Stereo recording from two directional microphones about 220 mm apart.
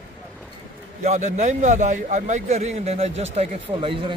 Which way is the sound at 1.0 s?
30° right (ahead or behind).